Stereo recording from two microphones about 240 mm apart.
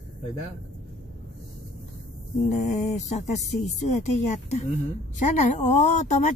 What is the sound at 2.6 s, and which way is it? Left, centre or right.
A woman's voice, left.